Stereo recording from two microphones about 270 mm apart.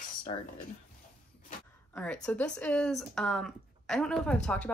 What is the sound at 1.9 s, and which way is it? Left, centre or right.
Speech, centre.